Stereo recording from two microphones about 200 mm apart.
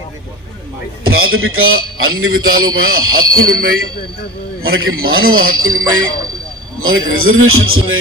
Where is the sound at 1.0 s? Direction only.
90° right.